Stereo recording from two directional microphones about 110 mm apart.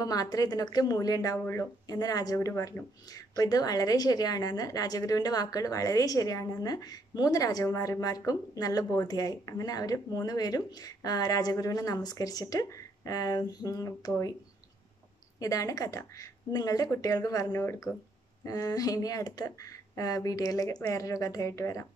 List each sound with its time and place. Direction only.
0.0 s a woman's voice: 35° left (ahead or behind)
1.4 s speech: 20° left (ahead or behind)
1.9 s a woman's voice: 35° left (ahead or behind)
15.3 s a woman's voice: 30° left (ahead or behind)